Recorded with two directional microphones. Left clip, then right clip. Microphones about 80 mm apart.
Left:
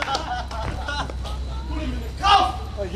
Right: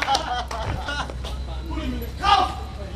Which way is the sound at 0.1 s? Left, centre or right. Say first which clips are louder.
Right 3 dB; right.